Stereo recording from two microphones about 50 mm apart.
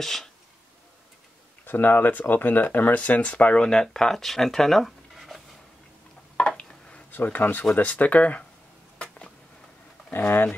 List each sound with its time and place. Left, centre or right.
0.0 s speech: centre
1.6 s speech: left; by 5.4 s centre
6.3 s a sound: left
7.1 s speech: left
8.9 s a sound: left
10.1 s speech: left